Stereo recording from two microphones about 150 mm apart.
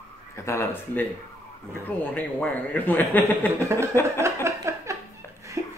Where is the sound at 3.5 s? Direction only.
20° right (ahead or behind).